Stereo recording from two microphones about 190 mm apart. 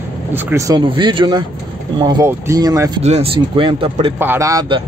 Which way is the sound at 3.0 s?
35° right (ahead or behind).